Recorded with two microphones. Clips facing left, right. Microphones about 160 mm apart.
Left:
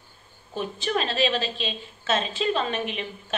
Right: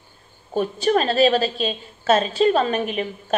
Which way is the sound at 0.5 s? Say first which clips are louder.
Right 8 dB; 45° right (ahead or behind).